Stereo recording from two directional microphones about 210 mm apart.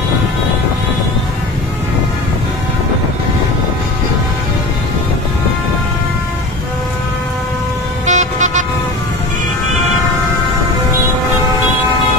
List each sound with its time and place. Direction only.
8.1 s vehicle: 35° right (ahead or behind)